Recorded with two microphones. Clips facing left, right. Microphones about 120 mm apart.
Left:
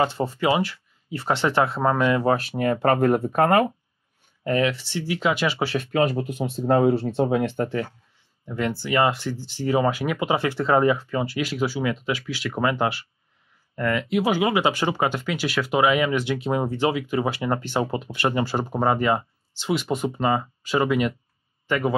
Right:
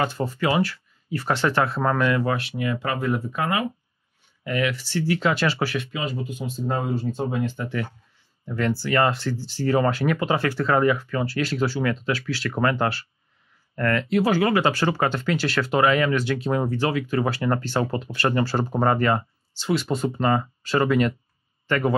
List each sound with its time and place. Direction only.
0.0 s speech: 25° left (ahead or behind)
2.3 s speech: 45° left (ahead or behind)
4.5 s speech: 30° left (ahead or behind)
5.8 s speech: 55° left (ahead or behind)
8.5 s a man's voice: 15° left (ahead or behind)